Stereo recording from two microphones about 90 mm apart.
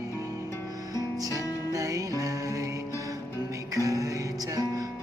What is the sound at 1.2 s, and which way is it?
Music, 40° right (ahead or behind).